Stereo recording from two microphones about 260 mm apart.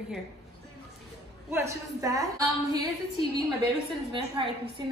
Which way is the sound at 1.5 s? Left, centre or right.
Centre.